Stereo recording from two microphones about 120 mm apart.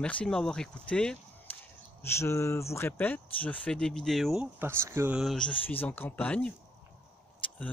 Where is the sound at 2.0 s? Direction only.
20° left (ahead or behind); by 4.5 s centre (ahead or behind).